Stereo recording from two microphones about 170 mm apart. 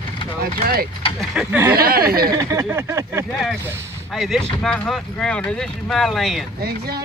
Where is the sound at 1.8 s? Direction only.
60° right (ahead or behind).